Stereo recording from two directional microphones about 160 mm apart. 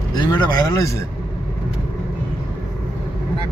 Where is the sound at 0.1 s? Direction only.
25° left (ahead or behind).